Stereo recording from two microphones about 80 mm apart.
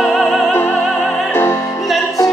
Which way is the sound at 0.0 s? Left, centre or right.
Centre.